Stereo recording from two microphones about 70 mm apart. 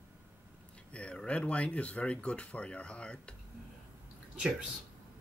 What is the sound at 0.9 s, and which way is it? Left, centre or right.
Speech, centre.